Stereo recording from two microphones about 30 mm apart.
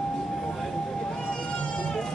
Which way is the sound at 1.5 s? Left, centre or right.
Left.